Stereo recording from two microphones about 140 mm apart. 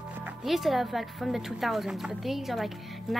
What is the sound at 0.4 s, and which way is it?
Speech, centre (ahead or behind).